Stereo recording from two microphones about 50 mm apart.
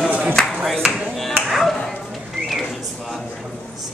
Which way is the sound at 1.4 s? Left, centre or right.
Centre.